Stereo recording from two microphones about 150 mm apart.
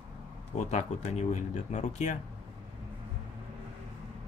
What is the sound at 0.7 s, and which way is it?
Speech, 50° left (ahead or behind).